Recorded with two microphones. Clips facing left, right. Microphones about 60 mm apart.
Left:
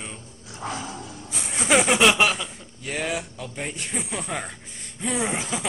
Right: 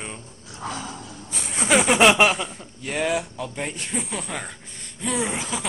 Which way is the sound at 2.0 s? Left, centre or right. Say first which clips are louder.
Right 3 dB; right.